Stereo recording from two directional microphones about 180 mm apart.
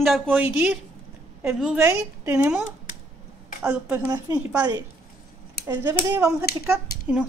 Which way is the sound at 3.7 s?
5° right (ahead or behind).